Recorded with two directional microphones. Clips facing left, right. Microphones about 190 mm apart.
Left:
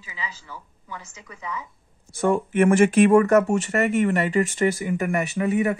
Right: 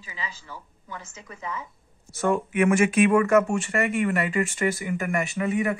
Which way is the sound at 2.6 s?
50° left (ahead or behind).